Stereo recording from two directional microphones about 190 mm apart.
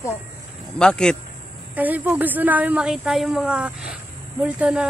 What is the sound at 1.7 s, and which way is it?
A woman's voice, 10° right (ahead or behind).